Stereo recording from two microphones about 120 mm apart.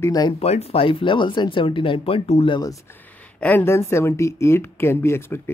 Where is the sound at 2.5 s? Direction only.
30° left (ahead or behind).